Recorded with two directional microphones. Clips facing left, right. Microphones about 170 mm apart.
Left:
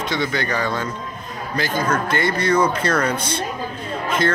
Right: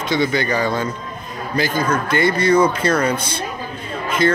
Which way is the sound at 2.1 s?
5° right (ahead or behind).